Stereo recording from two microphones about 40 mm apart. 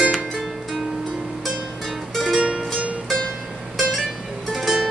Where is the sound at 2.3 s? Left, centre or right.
Right.